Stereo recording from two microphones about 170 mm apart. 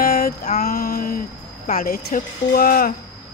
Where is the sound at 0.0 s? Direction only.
60° left (ahead or behind).